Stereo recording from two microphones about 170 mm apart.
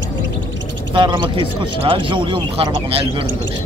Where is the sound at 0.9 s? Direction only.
25° right (ahead or behind).